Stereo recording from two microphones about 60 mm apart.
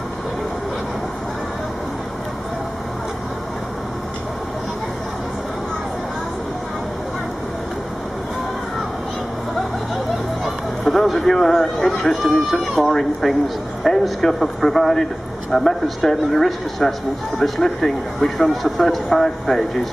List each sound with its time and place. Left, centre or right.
10.4 s speech: centre